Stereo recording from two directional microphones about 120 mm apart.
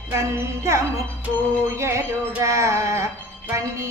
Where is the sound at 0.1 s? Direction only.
25° right (ahead or behind).